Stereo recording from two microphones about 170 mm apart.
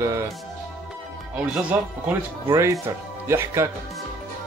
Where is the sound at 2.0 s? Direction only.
15° right (ahead or behind).